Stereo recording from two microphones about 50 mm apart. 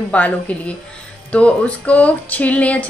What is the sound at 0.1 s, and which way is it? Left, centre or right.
A woman's voice, left.